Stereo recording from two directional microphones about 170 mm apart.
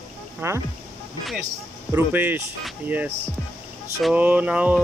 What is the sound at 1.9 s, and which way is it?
Speech, 10° right (ahead or behind).